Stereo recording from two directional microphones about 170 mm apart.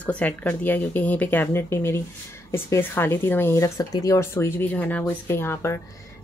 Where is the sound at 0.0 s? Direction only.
10° left (ahead or behind).